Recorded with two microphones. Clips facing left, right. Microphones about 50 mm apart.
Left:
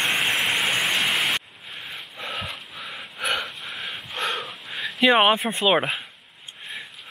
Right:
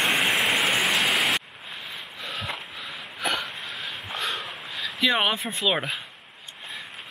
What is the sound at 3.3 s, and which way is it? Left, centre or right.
Dog, centre.